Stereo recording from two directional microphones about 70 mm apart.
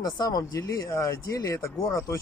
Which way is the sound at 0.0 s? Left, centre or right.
Left.